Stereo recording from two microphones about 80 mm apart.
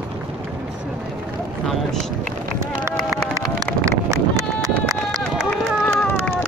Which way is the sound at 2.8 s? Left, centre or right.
Right.